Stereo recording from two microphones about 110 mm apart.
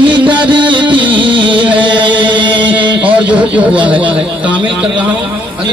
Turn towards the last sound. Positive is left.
turn(degrees=-10)  # may be behind; listen again after turning